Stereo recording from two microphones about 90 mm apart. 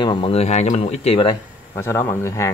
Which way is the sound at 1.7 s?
30° left (ahead or behind).